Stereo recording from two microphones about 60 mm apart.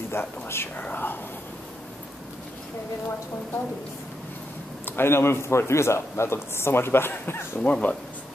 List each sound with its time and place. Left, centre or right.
0.1 s a man's voice: left
0.7 s speech: left
4.8 s a man's voice: left
7.6 s speech: left